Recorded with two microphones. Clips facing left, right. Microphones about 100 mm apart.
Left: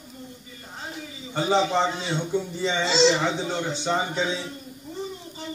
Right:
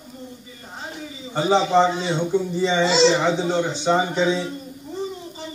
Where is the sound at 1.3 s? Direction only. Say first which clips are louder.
Right 5 dB; 20° right (ahead or behind).